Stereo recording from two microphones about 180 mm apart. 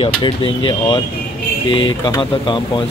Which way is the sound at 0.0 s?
30° left (ahead or behind).